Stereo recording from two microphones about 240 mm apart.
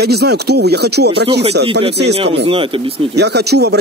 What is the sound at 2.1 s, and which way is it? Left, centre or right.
Speech, right.